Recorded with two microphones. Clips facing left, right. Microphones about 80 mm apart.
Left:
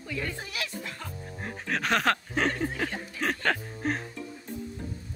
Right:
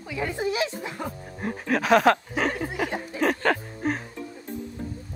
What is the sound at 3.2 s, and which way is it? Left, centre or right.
Music, centre.